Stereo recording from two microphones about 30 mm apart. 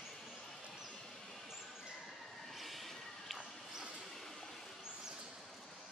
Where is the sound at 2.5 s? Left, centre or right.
Centre.